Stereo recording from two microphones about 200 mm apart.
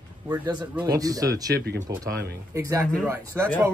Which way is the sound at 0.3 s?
20° right (ahead or behind).